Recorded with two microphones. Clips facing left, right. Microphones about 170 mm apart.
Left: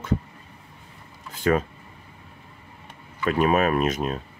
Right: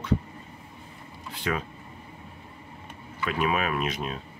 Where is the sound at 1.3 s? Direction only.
45° left (ahead or behind).